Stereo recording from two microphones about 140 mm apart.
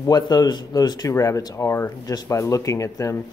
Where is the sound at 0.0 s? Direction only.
30° left (ahead or behind).